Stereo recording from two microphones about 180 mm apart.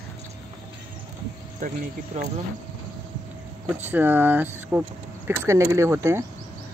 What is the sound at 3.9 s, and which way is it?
Speech, 10° right (ahead or behind).